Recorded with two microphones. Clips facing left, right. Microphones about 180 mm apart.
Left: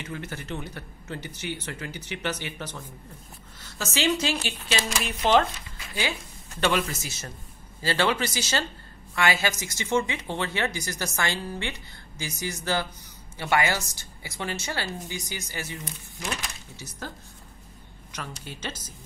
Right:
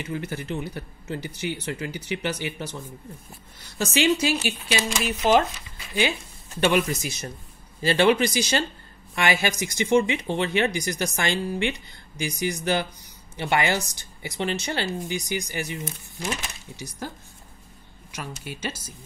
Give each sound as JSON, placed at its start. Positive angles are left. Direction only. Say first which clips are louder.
{"t": 0.0, "sound": "speech", "louder": "right 5 dB", "side_deg": -10}
{"t": 6.6, "sound": "speech", "louder": "right 4 dB", "side_deg": -15}
{"t": 18.1, "sound": "speech", "louder": "right 3 dB", "side_deg": -10}